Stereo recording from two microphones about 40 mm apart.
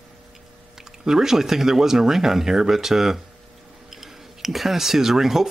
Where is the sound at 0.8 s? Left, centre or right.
Centre.